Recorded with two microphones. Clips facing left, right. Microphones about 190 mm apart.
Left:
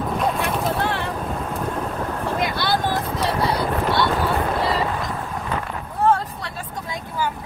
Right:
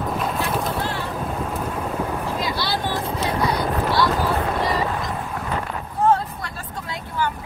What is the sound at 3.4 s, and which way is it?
Vehicle, 30° left (ahead or behind).